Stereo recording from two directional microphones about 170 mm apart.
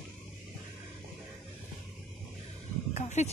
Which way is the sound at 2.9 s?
45° left (ahead or behind).